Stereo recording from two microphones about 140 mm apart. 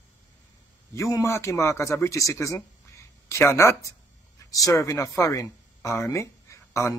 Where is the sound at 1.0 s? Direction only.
20° left (ahead or behind).